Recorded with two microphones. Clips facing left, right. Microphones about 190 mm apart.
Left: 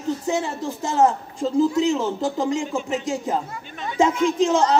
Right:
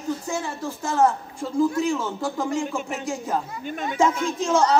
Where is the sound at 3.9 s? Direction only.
20° left (ahead or behind).